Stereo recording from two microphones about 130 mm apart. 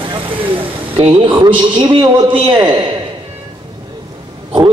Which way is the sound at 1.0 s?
40° right (ahead or behind).